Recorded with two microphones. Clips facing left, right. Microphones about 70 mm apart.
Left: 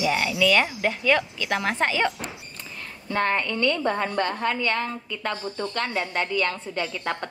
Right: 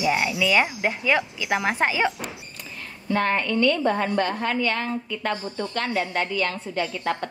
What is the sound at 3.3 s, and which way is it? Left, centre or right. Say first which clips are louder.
A woman's voice: right 3 dB; left.